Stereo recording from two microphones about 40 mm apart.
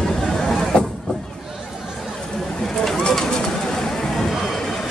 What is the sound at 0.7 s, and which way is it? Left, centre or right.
Vehicle, left.